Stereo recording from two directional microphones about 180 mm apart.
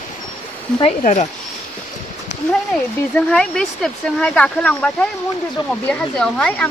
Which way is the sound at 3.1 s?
5° left (ahead or behind).